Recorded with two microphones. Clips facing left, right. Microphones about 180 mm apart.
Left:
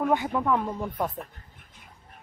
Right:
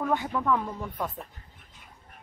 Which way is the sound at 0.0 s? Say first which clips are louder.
Left 3 dB; 20° left (ahead or behind).